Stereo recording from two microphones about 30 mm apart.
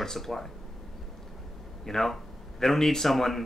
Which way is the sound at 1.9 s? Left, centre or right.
Centre.